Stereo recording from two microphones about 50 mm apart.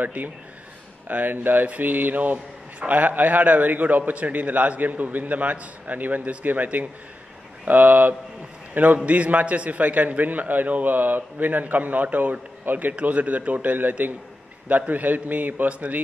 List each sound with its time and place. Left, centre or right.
0.0 s a man's voice: right
2.3 s a man's voice: right
3.0 s a man's voice: right